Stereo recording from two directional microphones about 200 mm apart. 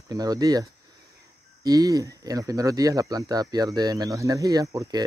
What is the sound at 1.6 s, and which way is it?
Speech, 20° right (ahead or behind).